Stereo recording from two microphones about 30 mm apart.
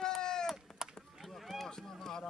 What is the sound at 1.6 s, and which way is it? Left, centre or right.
Run, centre.